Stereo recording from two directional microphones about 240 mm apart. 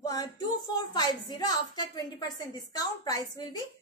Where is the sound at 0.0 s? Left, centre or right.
Centre.